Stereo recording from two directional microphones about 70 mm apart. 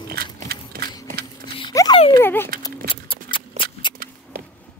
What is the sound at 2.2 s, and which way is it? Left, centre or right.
Dog, left.